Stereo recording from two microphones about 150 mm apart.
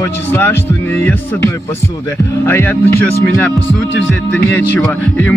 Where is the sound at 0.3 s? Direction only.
15° left (ahead or behind).